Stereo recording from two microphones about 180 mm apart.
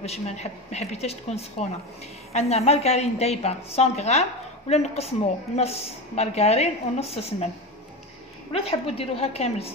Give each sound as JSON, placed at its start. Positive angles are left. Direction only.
{"t": 0.0, "sound": "a woman's voice", "side_deg": 35}
{"t": 8.5, "sound": "a woman's voice", "side_deg": 35}